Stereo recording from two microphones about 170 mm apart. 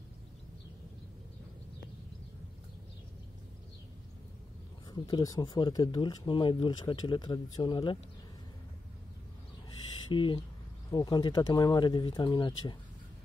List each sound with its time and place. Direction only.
4.9 s speech: 20° left (ahead or behind)
10.0 s speech: 30° left (ahead or behind)